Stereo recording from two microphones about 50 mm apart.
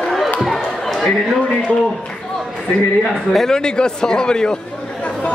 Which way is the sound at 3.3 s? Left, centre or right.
Centre.